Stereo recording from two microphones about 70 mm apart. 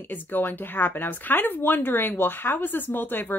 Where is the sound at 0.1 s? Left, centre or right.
Left.